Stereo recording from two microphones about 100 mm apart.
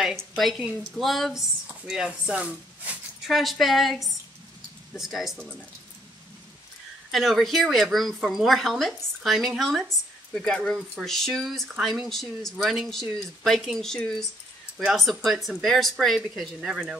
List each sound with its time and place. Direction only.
0.4 s a woman's voice: centre (ahead or behind)
3.3 s a woman's voice: centre (ahead or behind)
7.1 s a woman's voice: centre (ahead or behind)